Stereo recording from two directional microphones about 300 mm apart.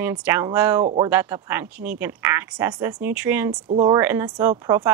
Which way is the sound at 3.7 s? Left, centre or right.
Right.